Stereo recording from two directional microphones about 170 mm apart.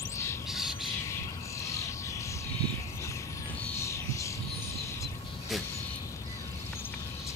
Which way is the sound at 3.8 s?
15° left (ahead or behind).